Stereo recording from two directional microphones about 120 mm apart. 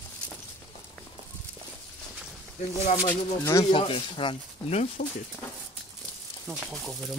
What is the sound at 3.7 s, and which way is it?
Speech, 50° left (ahead or behind).